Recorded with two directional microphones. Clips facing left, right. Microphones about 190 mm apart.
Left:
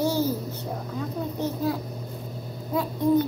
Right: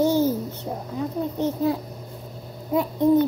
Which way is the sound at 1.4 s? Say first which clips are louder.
Right 4 dB; 25° right (ahead or behind).